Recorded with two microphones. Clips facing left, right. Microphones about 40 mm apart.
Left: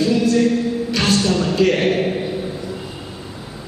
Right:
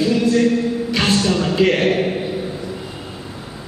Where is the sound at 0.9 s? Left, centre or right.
Centre.